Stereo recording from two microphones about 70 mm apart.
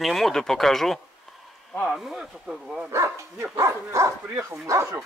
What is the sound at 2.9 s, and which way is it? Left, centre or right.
Speech, right.